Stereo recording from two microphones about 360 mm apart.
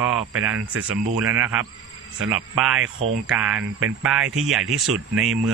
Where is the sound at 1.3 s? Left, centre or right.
Centre.